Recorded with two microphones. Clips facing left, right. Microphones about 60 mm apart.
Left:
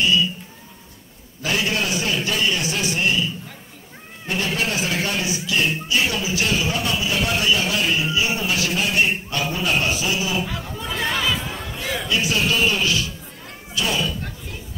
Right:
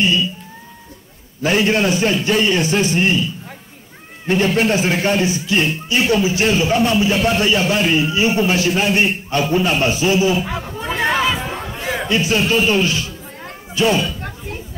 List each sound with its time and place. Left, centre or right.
1.4 s a man's voice: right
4.6 s a man's voice: right
10.4 s chatter: right
13.7 s a sound: right